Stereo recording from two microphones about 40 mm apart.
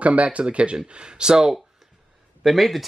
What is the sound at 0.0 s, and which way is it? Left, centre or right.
Speech, right.